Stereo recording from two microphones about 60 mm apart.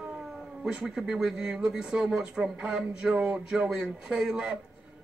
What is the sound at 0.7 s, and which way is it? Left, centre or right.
Speech, centre.